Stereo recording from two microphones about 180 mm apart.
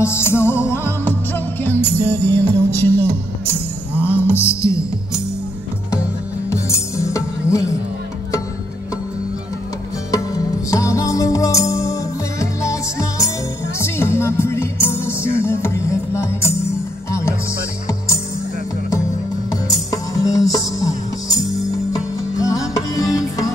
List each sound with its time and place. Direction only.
0.0 s music: 15° left (ahead or behind)
4.3 s music: 15° left (ahead or behind)
6.5 s music: 15° left (ahead or behind)
10.1 s music: 20° left (ahead or behind)
19.5 s music: 20° left (ahead or behind)
22.4 s music: 20° left (ahead or behind)